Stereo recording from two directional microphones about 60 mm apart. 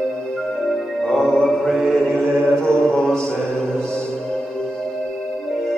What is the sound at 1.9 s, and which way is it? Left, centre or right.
Mantra, centre.